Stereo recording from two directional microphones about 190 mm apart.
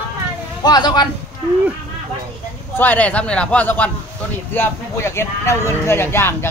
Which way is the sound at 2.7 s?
10° left (ahead or behind).